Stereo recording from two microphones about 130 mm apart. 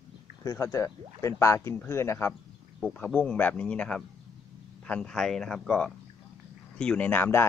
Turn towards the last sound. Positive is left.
turn(degrees=15)  # may be behind; listen again after turning